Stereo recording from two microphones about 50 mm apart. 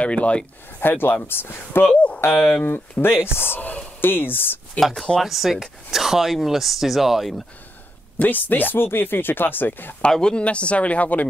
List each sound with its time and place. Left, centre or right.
0.0 s speech: left
0.7 s speech: left
2.3 s speech: left
3.0 s speech: left
4.8 s speech: left
5.2 s speech: centre
8.2 s speech: left
10.1 s speech: centre